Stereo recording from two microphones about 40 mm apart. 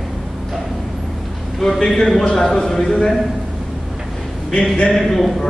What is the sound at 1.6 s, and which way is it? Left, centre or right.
A man's voice, centre.